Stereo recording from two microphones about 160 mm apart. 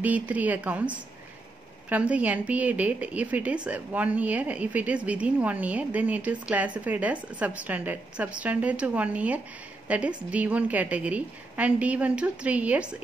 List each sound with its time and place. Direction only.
0.0 s a woman's voice: 10° right (ahead or behind)